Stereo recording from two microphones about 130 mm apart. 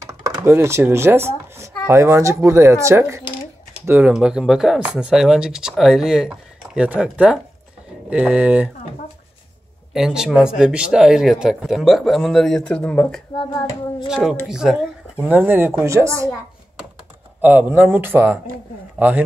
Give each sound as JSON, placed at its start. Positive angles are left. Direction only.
{"t": 0.0, "sound": "speech", "side_deg": -20}
{"t": 9.9, "sound": "speech", "side_deg": -5}
{"t": 13.4, "sound": "child singing", "side_deg": 35}
{"t": 14.0, "sound": "speech", "side_deg": -5}
{"t": 17.4, "sound": "speech", "side_deg": -15}